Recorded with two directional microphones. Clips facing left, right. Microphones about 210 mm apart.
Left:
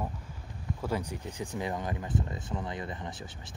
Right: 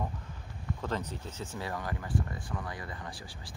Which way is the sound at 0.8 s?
10° left (ahead or behind).